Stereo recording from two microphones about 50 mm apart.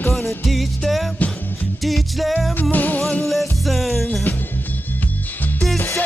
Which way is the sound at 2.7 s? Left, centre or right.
Left.